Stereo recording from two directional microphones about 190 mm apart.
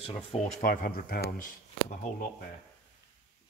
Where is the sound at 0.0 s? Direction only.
35° left (ahead or behind); by 1.5 s 55° left (ahead or behind).